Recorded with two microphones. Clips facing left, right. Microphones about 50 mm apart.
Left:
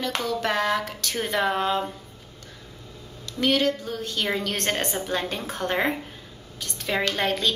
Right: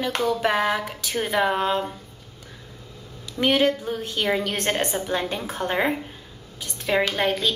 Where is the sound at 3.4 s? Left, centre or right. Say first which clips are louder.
Right 2 dB; right.